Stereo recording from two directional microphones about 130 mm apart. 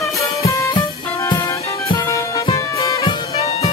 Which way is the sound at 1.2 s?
25° left (ahead or behind).